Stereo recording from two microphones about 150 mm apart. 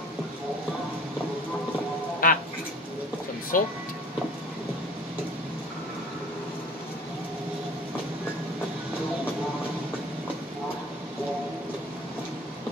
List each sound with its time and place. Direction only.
2.2 s quack: 65° left (ahead or behind)
3.5 s speech: 65° left (ahead or behind)